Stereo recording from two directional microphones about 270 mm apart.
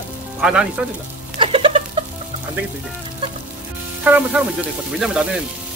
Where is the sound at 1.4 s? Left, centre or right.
Centre.